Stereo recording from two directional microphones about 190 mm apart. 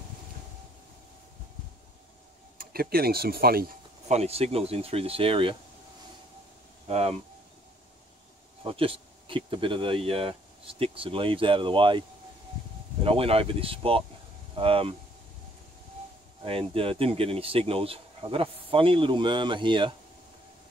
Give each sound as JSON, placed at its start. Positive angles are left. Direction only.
{"t": 2.5, "sound": "speech", "side_deg": -50}
{"t": 4.1, "sound": "speech", "side_deg": -35}
{"t": 6.9, "sound": "speech", "side_deg": -35}
{"t": 8.6, "sound": "speech", "side_deg": -30}
{"t": 13.0, "sound": "speech", "side_deg": -30}
{"t": 16.4, "sound": "speech", "side_deg": -30}